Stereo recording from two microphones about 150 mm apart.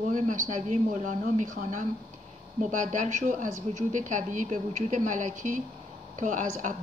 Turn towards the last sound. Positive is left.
turn(degrees=-55)  # may be behind; listen again after turning